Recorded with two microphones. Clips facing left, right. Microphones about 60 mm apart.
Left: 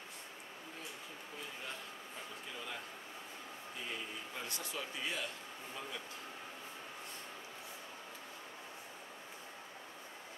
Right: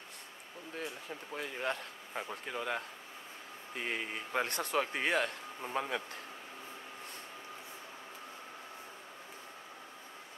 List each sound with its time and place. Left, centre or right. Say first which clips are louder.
1.3 s speech: right 11 dB; right